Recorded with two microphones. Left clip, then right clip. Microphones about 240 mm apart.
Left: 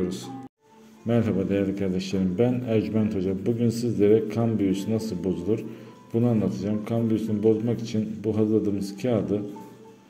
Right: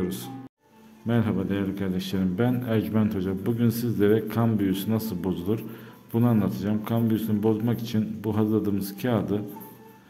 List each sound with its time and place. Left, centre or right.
1.0 s a man's voice: centre